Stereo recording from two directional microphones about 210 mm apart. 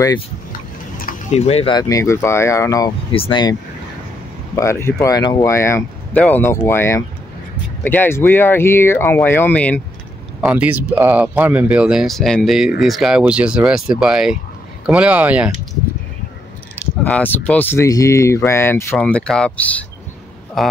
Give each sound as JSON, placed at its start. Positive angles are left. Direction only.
{"t": 0.5, "sound": "speech", "side_deg": 40}
{"t": 4.6, "sound": "speech", "side_deg": 15}
{"t": 10.4, "sound": "speech", "side_deg": -5}
{"t": 17.0, "sound": "speech", "side_deg": 10}